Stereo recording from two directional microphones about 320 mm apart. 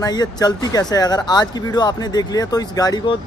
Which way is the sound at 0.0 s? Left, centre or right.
Centre.